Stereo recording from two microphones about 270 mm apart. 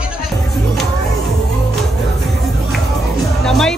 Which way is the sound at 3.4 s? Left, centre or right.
Centre.